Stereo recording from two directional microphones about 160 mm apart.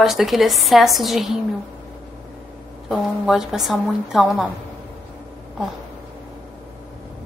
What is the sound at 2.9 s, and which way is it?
A woman's voice, 5° right (ahead or behind).